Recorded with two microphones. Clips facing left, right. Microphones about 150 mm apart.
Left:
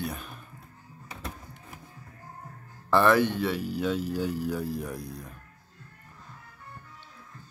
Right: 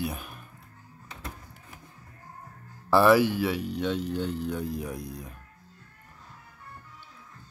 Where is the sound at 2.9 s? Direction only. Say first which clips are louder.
Right 2 dB; 5° right (ahead or behind).